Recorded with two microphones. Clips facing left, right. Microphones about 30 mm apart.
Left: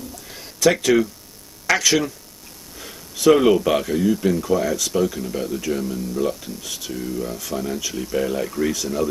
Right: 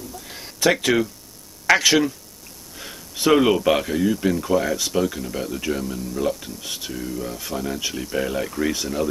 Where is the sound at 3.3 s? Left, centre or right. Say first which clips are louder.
Left 1 dB; centre.